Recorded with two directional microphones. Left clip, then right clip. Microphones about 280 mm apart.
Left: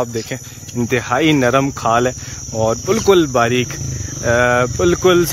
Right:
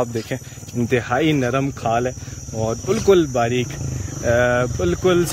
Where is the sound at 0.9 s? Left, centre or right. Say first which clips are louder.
Left 4 dB; centre.